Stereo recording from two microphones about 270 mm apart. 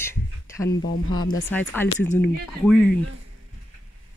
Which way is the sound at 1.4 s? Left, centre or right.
Centre.